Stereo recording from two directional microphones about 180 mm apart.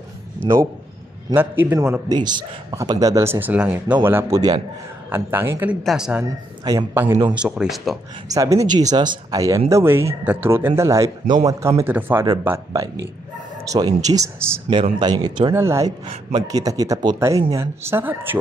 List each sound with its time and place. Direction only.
1.3 s a man's voice: 10° right (ahead or behind)
6.1 s a man's voice: 20° right (ahead or behind); by 8.0 s centre (ahead or behind)
8.3 s a man's voice: 20° right (ahead or behind)
15.5 s a man's voice: 15° right (ahead or behind)
16.1 s a man's voice: 35° right (ahead or behind)
16.4 s speech: 20° right (ahead or behind)